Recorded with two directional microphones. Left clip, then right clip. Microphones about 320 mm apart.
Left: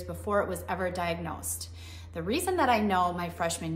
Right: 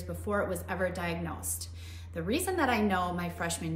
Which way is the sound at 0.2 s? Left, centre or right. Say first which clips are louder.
Left 3 dB; centre.